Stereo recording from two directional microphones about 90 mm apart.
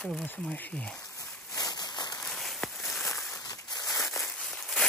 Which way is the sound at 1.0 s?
35° left (ahead or behind).